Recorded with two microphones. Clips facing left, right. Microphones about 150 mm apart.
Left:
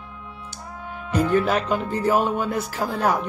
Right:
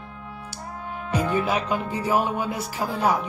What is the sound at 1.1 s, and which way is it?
Speech, 10° right (ahead or behind).